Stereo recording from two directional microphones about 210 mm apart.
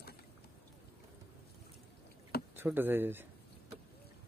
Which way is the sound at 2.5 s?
10° right (ahead or behind).